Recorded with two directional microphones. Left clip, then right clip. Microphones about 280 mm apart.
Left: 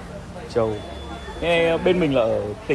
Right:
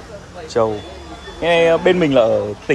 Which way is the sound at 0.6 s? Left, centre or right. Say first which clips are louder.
Right 5 dB; centre.